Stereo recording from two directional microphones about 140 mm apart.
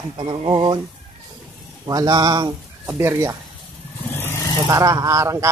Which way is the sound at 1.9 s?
25° right (ahead or behind).